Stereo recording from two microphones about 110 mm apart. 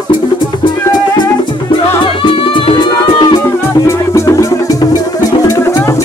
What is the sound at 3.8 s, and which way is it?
Music, 25° left (ahead or behind).